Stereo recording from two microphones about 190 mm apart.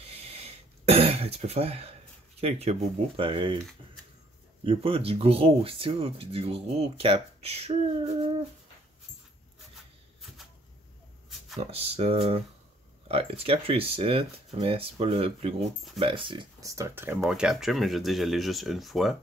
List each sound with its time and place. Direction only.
0.1 s throat clearing: 35° right (ahead or behind)
2.4 s speech: 35° right (ahead or behind)
4.6 s speech: 30° right (ahead or behind)
11.2 s a sound: centre (ahead or behind)
11.6 s speech: 30° right (ahead or behind); by 19.1 s centre (ahead or behind)